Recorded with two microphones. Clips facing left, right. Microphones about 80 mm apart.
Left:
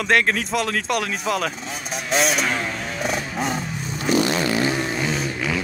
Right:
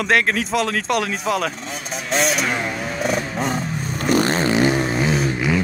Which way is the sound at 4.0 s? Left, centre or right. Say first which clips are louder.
Right 2 dB; right.